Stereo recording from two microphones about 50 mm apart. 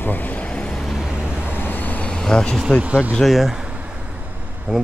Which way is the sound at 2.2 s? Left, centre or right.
Centre.